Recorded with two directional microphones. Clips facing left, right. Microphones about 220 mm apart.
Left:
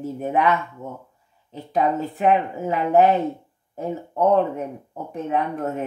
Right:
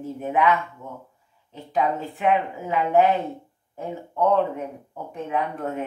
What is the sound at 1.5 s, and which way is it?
Speech, 40° left (ahead or behind).